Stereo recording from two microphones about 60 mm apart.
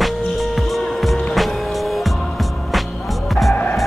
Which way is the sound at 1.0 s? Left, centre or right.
Centre.